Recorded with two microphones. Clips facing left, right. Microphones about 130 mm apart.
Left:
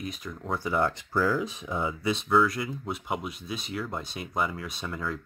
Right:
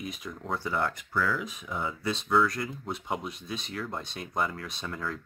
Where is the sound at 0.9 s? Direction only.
30° left (ahead or behind).